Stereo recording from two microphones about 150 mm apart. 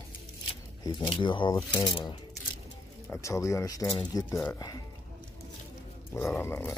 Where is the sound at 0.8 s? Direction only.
35° left (ahead or behind).